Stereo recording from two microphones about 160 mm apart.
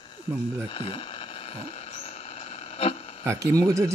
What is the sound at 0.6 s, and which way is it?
Frog, 30° left (ahead or behind).